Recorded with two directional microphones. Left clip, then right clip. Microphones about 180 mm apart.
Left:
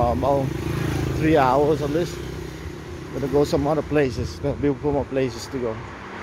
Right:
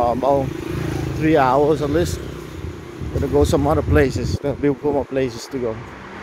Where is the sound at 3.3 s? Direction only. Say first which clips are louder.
Right 3 dB; 15° right (ahead or behind).